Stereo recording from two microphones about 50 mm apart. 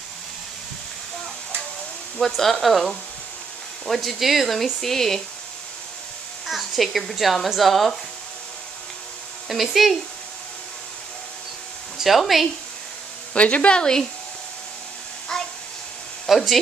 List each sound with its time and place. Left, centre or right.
2.1 s speech: centre
6.4 s speech: centre
9.5 s speech: centre
12.0 s speech: centre
13.3 s speech: left
15.3 s a sound: centre
16.3 s speech: centre